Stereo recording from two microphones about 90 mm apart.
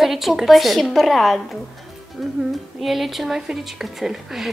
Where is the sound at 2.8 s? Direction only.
Centre (ahead or behind).